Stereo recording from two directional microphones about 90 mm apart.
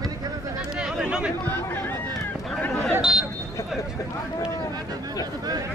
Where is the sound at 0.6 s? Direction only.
5° right (ahead or behind).